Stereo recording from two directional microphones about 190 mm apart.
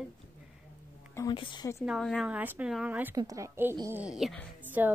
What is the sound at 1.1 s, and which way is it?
Speech, 20° left (ahead or behind).